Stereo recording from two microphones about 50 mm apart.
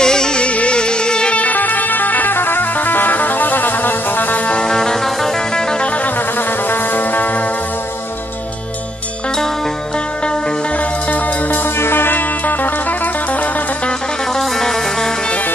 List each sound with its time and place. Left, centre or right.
0.0 s music: centre; by 4.4 s left
4.5 s music: centre
5.9 s music: left
6.1 s music: left
10.8 s music: left
14.3 s music: centre